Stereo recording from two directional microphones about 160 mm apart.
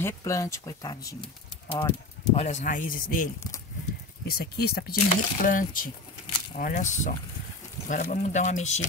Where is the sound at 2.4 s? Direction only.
45° left (ahead or behind).